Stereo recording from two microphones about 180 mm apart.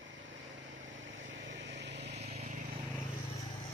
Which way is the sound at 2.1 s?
35° right (ahead or behind).